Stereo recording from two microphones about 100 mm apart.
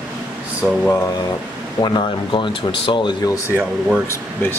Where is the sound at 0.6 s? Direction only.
10° right (ahead or behind).